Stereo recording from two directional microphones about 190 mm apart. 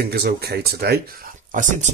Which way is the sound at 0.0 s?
55° right (ahead or behind).